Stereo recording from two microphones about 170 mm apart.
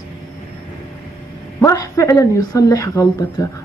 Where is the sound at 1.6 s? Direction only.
20° left (ahead or behind).